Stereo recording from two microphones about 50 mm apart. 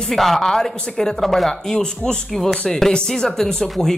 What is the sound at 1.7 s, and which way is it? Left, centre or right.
A man's voice, centre.